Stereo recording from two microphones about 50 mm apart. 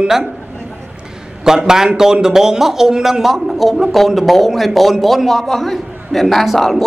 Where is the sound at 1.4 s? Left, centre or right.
Centre.